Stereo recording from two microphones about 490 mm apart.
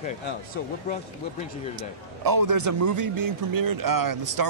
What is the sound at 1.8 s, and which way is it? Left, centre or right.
A man's voice, right.